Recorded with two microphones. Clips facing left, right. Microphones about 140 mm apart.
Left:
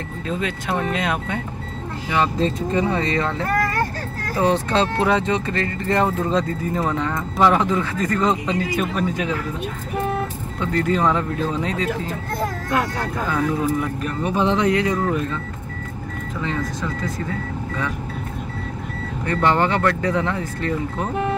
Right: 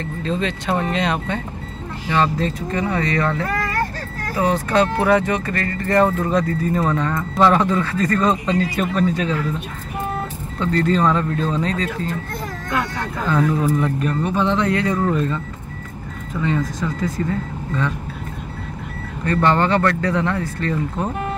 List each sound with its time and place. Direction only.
0.3 s speech: 5° left (ahead or behind)
10.6 s speech: 15° left (ahead or behind)
13.3 s speech: 5° left (ahead or behind)
19.2 s speech: 15° left (ahead or behind)